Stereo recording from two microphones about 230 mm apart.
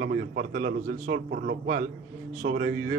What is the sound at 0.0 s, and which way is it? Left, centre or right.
A man's voice, right.